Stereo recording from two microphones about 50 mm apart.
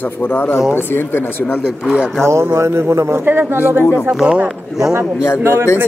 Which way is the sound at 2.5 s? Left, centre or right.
Right.